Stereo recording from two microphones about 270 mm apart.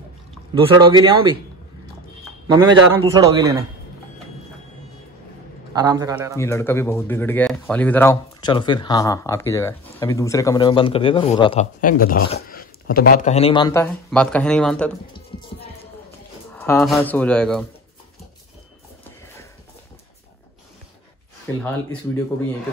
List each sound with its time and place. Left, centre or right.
0.6 s speech: centre
2.4 s a man's voice: centre
5.7 s a man's voice: centre
6.3 s speech: centre; by 12.2 s left
12.4 s a sound: left
13.1 s a man's voice: left; by 14.9 s centre
16.5 s a man's voice: centre
21.5 s speech: centre